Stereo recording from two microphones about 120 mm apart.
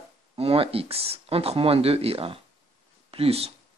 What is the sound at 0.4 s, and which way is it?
Speech, 55° right (ahead or behind).